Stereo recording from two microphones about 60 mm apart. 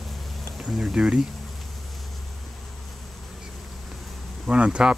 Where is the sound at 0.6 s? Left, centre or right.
Centre.